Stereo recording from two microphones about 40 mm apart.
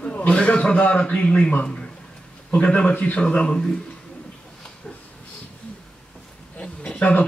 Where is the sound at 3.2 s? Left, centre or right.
Left.